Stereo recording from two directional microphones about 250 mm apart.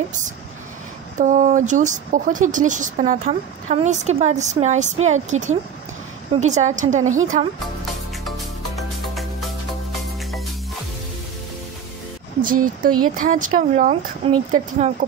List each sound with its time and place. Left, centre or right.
1.1 s speech: right
8.7 s music: centre
12.4 s speech: right